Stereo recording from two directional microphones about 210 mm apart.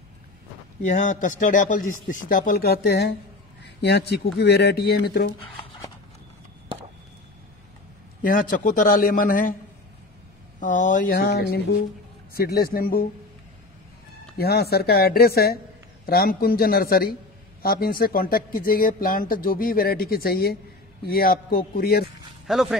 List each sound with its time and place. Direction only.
0.8 s speech: 35° left (ahead or behind)
8.2 s speech: 40° left (ahead or behind)
10.6 s speech: 35° left (ahead or behind)
14.4 s speech: 50° left (ahead or behind)
22.5 s speech: centre (ahead or behind)